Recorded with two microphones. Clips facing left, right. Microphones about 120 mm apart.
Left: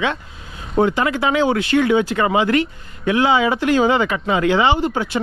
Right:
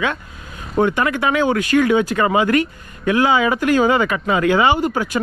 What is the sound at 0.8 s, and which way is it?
Speech, 45° left (ahead or behind).